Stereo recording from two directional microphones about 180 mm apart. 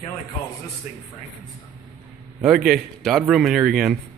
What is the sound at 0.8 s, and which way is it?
Speech, 50° left (ahead or behind).